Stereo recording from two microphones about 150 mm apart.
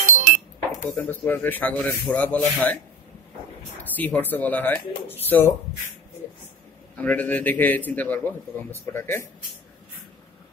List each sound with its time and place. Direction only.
0.0 s dishes: 60° right (ahead or behind)
0.9 s a man's voice: 10° left (ahead or behind)
3.9 s a man's voice: 10° left (ahead or behind)
7.0 s a man's voice: 10° left (ahead or behind)